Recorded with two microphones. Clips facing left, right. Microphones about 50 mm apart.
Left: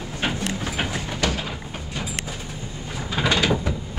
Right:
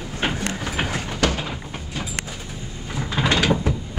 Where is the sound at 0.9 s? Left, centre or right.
Right.